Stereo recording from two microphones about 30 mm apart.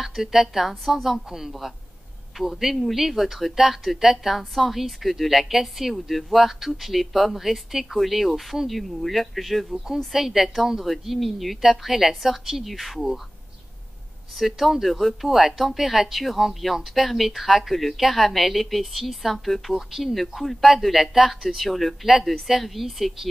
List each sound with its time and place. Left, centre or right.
0.0 s a woman's voice: centre
14.3 s a woman's voice: centre
19.7 s a woman's voice: centre
20.2 s a woman's voice: centre